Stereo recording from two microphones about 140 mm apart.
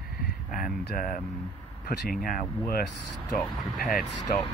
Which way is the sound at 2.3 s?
85° left.